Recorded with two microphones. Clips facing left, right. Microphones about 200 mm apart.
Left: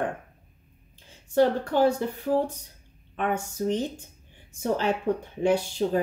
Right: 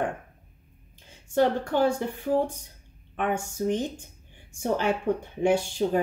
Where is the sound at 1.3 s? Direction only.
35° left (ahead or behind).